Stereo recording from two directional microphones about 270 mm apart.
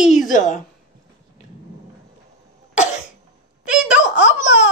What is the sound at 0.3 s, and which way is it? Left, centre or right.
Speech, left.